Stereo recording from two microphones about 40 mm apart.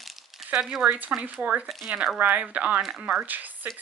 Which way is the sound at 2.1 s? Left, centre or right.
Right.